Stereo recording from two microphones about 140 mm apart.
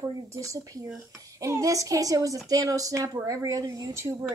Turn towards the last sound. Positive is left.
turn(degrees=-25)  # may be behind; listen again after turning